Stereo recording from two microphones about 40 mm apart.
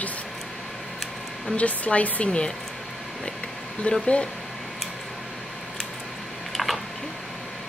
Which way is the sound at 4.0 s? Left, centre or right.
Left.